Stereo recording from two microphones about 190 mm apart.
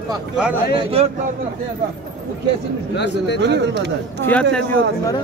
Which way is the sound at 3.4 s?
65° right (ahead or behind).